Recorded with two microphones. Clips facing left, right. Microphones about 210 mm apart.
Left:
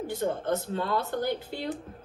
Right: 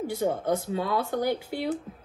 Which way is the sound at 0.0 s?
10° right (ahead or behind).